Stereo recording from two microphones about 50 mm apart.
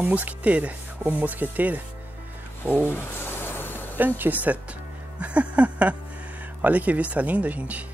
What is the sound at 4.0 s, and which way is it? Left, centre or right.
Speech, right.